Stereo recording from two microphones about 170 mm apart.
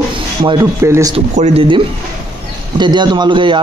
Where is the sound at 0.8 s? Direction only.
15° right (ahead or behind).